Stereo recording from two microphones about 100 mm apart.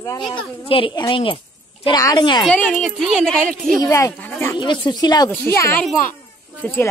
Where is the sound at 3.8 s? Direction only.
30° left (ahead or behind).